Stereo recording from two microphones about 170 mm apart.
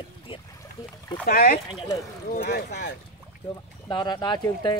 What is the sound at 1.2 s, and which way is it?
Speech, 55° left (ahead or behind).